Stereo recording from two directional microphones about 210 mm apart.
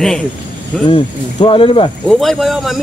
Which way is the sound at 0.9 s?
25° left (ahead or behind).